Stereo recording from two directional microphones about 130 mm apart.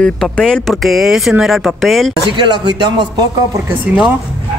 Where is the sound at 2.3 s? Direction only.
35° right (ahead or behind).